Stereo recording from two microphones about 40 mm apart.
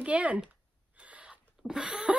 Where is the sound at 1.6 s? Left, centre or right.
Centre.